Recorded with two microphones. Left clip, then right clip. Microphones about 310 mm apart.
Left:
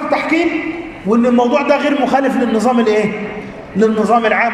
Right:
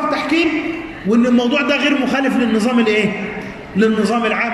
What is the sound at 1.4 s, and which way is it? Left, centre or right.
A man's voice, left.